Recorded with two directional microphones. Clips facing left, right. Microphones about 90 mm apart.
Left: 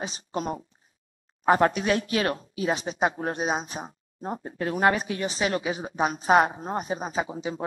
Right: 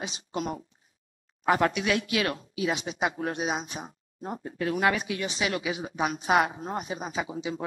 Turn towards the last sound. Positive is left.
turn(degrees=40)  # may be behind; listen again after turning